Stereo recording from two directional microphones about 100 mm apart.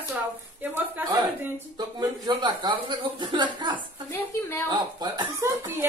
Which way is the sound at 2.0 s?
45° right (ahead or behind).